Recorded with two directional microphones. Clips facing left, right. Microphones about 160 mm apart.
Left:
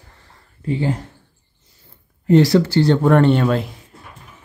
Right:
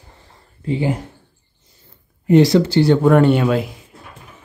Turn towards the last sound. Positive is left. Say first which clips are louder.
# right 1 dB
turn(degrees=-5)  # may be behind; listen again after turning